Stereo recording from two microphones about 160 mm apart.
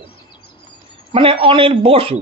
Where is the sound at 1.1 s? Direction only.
35° right (ahead or behind).